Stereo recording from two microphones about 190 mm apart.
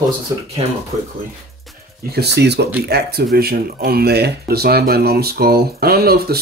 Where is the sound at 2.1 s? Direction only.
60° right (ahead or behind).